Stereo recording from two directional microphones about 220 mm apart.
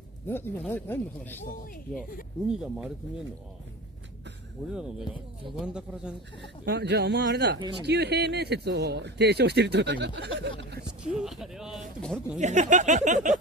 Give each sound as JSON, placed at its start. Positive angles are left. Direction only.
{"t": 0.3, "sound": "speech", "side_deg": 10}
{"t": 2.4, "sound": "speech", "side_deg": -5}
{"t": 5.6, "sound": "speech", "side_deg": -5}
{"t": 6.4, "sound": "speech", "side_deg": -50}
{"t": 11.1, "sound": "speech", "side_deg": 0}
{"t": 12.4, "sound": "speech", "side_deg": -30}